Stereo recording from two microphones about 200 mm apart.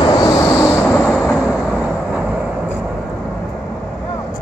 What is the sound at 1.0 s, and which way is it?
Vehicle, 5° left (ahead or behind).